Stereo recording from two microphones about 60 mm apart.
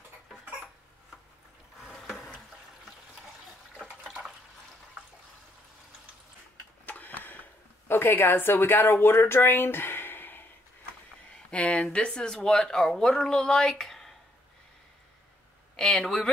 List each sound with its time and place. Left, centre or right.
2.0 s water: centre
3.9 s water: centre
6.9 s a sound: left
7.9 s a woman's voice: left
11.5 s speech: centre
15.7 s speech: centre